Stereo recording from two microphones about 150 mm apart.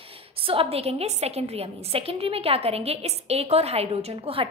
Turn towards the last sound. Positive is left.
turn(degrees=-40)  # may be behind; listen again after turning